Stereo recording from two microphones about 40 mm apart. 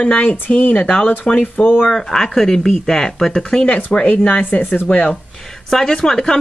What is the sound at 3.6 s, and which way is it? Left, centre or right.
Speech, left.